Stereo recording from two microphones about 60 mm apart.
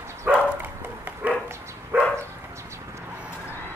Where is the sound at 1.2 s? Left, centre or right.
Right.